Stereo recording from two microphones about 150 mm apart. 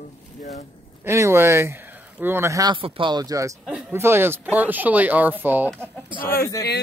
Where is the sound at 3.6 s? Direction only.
10° right (ahead or behind).